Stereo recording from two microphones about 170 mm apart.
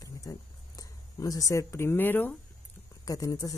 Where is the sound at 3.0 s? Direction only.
20° left (ahead or behind).